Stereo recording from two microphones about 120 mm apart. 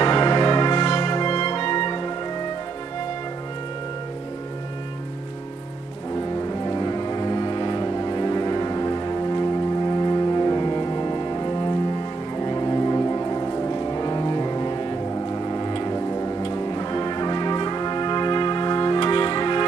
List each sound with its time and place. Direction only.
0.0 s music: 40° left (ahead or behind)
6.4 s music: 35° left (ahead or behind)